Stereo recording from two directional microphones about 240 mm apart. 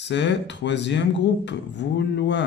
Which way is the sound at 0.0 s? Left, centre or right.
Left.